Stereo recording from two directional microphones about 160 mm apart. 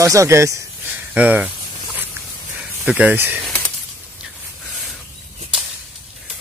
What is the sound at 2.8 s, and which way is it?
Speech, 10° right (ahead or behind).